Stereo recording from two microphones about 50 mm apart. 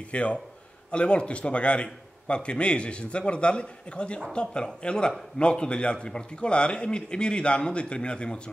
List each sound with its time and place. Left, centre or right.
0.1 s a man's voice: left